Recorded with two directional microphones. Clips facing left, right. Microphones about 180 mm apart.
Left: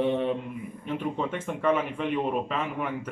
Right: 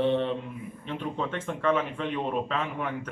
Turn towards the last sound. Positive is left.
turn(degrees=10)  # may be behind; listen again after turning